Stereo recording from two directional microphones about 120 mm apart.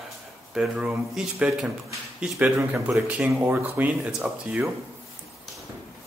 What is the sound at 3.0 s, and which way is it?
Speech, 10° right (ahead or behind).